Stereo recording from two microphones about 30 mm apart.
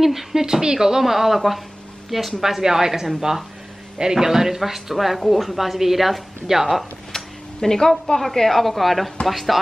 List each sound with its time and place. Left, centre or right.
0.0 s a woman's voice: centre
2.6 s a woman's voice: centre
7.1 s a sound: centre
8.2 s a woman's voice: centre